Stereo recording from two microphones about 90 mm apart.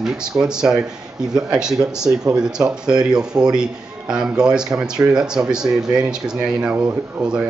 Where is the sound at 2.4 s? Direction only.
10° right (ahead or behind).